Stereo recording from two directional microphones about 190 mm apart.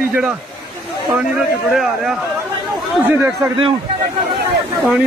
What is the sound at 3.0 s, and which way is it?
Speech, 10° right (ahead or behind).